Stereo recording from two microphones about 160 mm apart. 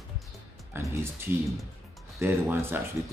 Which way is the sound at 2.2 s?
15° right (ahead or behind).